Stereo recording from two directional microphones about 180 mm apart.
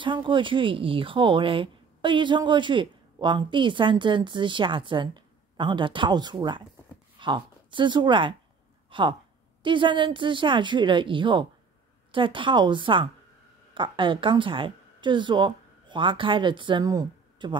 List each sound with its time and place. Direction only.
0.0 s speech: 25° right (ahead or behind)